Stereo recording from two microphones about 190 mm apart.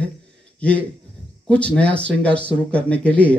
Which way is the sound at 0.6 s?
5° left (ahead or behind).